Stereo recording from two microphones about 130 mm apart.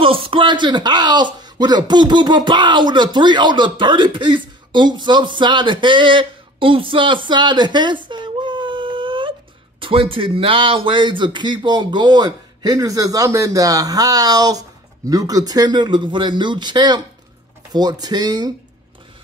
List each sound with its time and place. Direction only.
0.0 s speech: 45° right (ahead or behind)